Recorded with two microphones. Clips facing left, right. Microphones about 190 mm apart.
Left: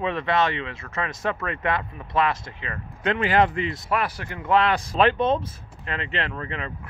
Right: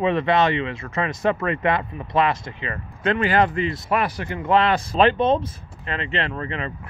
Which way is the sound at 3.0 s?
15° left (ahead or behind).